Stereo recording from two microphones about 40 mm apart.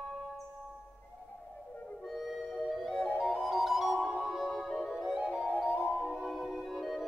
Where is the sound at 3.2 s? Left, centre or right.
Right.